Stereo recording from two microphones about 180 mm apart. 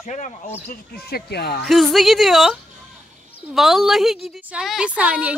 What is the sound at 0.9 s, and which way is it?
Speech, 60° left (ahead or behind).